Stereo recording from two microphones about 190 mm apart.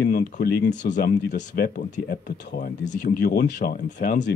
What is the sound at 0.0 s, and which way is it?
Speech, 55° left (ahead or behind).